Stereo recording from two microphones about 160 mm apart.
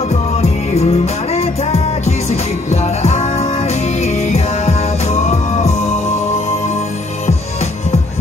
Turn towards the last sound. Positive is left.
turn(degrees=45)  # may be behind; listen again after turning